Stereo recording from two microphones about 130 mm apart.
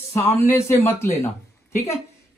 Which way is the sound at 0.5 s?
20° left (ahead or behind).